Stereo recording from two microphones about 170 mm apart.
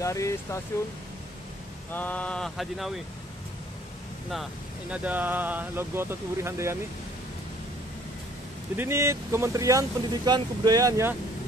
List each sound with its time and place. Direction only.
0.0 s speech: 20° left (ahead or behind)
1.9 s speech: 10° left (ahead or behind)
4.3 s speech: 5° right (ahead or behind)
8.7 s speech: 15° right (ahead or behind)